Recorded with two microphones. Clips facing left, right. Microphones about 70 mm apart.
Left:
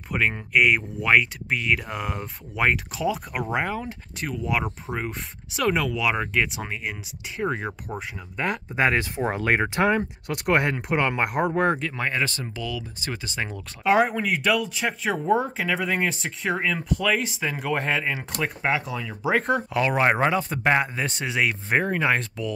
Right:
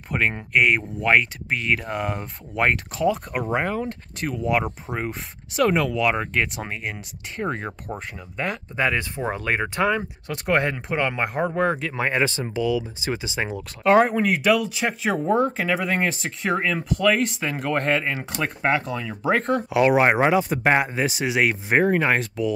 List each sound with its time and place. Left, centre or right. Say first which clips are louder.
0.1 s speech: right 1 dB; centre
9.4 s speech: left 3 dB; left
9.8 s speech: even; centre
11.9 s speech: right 4 dB; centre
13.8 s speech: right 3 dB; centre
19.9 s speech: right 2 dB; centre